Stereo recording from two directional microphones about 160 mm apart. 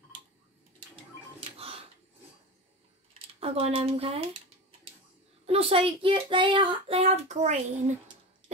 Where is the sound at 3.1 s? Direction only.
40° right (ahead or behind).